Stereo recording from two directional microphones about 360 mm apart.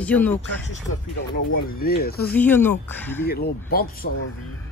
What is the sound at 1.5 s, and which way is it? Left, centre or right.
Speech, left.